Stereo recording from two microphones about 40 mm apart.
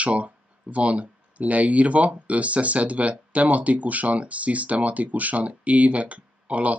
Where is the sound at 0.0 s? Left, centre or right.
Right.